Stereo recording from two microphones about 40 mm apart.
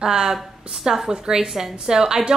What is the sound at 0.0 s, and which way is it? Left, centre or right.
A woman's voice, centre.